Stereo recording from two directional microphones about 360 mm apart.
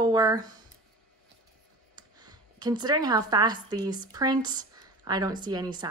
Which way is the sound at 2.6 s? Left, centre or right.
Centre.